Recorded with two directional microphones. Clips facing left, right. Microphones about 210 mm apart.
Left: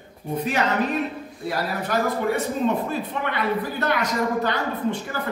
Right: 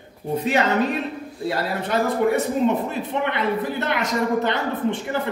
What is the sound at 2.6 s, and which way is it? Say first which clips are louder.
Speech: right 2 dB; 20° right (ahead or behind).